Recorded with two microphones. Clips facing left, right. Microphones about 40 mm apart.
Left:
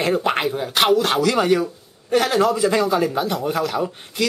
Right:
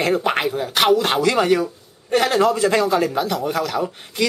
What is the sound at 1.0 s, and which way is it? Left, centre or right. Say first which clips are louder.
Speech: right 1 dB; centre.